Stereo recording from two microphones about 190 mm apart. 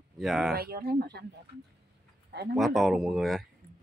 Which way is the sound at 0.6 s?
55° right (ahead or behind).